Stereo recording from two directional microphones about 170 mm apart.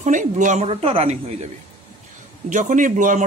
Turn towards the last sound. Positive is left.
turn(degrees=-50)  # may be behind; listen again after turning